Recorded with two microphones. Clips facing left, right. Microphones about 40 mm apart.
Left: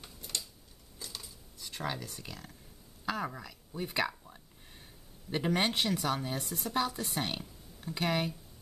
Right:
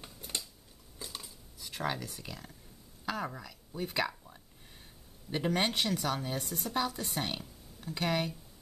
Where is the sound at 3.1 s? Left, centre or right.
Centre.